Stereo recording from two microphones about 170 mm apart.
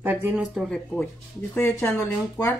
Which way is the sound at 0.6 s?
5° left (ahead or behind).